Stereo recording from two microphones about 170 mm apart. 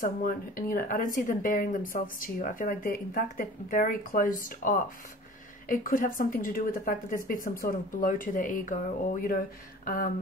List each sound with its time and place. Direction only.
0.0 s a woman's voice: 55° left (ahead or behind)